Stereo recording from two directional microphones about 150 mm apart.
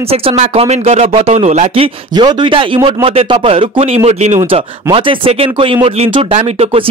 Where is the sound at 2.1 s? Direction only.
30° right (ahead or behind).